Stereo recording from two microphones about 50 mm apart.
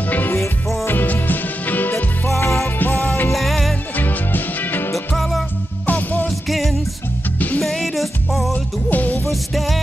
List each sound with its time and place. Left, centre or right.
0.8 s music: left
2.2 s music: left
2.8 s music: left
3.3 s music: centre
3.9 s music: left
4.9 s music: centre
5.9 s music: left
6.4 s music: centre
7.3 s music: left
7.6 s music: centre
8.9 s music: left
9.3 s music: centre